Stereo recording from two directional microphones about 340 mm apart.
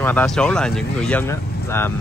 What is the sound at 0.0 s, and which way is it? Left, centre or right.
Speech, centre.